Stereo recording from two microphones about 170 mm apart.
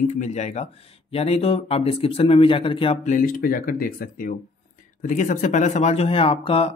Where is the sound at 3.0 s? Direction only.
50° left (ahead or behind).